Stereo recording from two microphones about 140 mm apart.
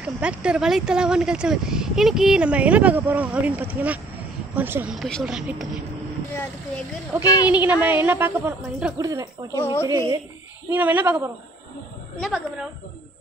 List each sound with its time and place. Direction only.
0.0 s speech: 10° right (ahead or behind)
4.9 s speech: centre (ahead or behind)
7.1 s speech: 15° right (ahead or behind)
8.9 s speech: 25° right (ahead or behind)
9.5 s speech: 20° left (ahead or behind)
9.8 s speech: 30° right (ahead or behind)
10.7 s speech: 15° right (ahead or behind)
12.2 s speech: centre (ahead or behind)